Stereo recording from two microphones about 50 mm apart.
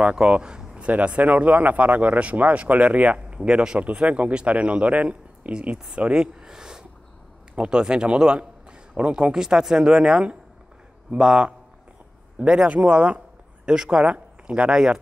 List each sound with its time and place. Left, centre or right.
0.0 s speech: centre
6.2 s a sound: centre
7.5 s a man's voice: centre
14.7 s a man's voice: centre